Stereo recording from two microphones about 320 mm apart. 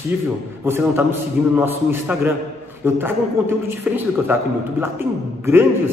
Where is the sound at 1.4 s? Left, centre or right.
Centre.